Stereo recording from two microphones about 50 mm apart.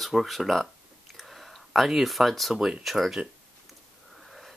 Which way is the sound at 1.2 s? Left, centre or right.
Centre.